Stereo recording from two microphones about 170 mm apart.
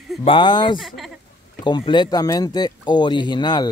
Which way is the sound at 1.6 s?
25° left (ahead or behind).